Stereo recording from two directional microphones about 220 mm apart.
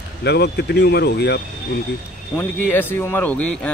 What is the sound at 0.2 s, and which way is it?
Speech, 50° left (ahead or behind).